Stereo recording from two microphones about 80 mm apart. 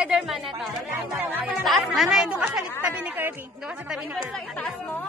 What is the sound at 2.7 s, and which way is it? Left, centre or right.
Speech, right.